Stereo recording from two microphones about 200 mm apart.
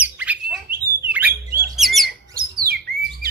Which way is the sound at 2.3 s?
45° right (ahead or behind).